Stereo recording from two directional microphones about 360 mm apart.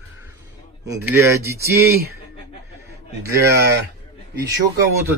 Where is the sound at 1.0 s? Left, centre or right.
Centre.